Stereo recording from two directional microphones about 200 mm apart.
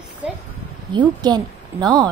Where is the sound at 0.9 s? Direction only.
20° right (ahead or behind).